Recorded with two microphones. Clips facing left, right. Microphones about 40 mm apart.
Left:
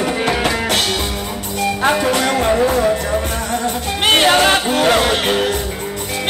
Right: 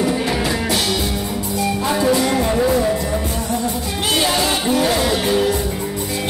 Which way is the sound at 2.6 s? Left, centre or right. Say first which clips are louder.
Left 2 dB; left.